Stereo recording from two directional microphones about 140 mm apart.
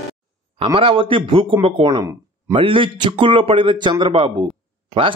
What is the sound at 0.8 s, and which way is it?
Speech, 40° right (ahead or behind).